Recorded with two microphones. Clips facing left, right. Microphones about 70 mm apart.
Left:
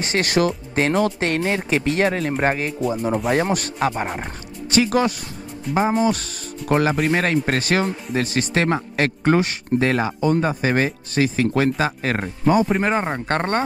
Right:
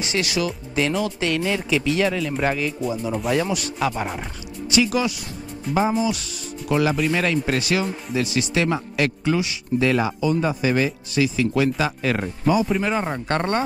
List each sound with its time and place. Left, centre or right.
0.0 s speech: left
13.0 s speech: left